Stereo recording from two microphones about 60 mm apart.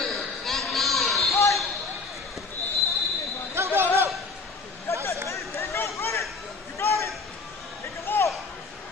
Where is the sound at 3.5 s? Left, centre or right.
Right.